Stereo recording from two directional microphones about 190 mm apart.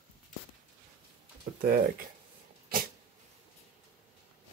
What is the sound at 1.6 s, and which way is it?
Speech, 50° right (ahead or behind).